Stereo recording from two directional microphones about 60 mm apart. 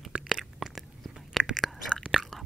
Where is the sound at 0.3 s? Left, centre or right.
Centre.